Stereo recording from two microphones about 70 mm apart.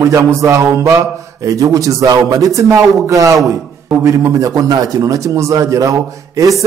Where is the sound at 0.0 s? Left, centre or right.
Right.